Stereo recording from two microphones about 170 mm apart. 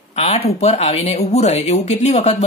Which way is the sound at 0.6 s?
40° left (ahead or behind).